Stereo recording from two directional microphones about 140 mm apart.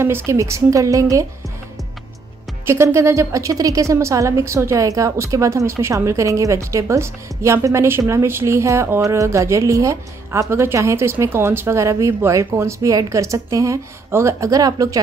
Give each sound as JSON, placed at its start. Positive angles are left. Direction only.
{"t": 0.3, "sound": "a woman's voice", "side_deg": -20}
{"t": 2.6, "sound": "a woman's voice", "side_deg": -20}